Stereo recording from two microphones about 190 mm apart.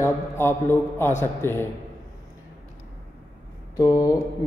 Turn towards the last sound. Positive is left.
turn(degrees=15)  # may be behind; listen again after turning